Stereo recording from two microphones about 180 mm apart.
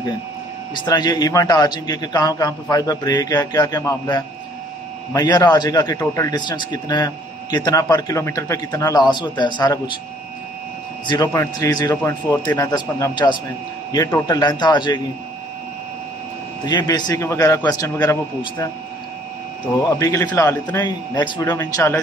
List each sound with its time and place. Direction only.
0.7 s a man's voice: 25° left (ahead or behind)
11.1 s a man's voice: 20° left (ahead or behind)
16.6 s a man's voice: 25° left (ahead or behind)
19.8 s speech: 20° left (ahead or behind)